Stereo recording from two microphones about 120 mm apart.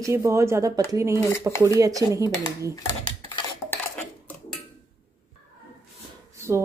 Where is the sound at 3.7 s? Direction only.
15° left (ahead or behind).